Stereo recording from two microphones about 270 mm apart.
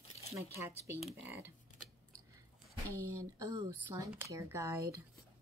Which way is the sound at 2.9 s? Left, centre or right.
Right.